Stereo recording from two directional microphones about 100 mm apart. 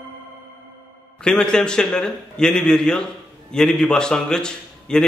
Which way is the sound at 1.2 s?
5° left (ahead or behind).